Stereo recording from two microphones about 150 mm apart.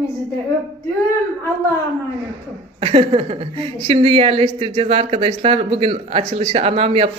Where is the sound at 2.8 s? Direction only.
40° right (ahead or behind).